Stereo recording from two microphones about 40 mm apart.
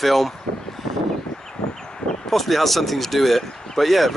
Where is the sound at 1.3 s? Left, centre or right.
Centre.